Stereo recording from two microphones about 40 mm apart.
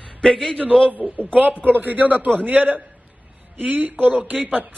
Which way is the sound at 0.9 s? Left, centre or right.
Right.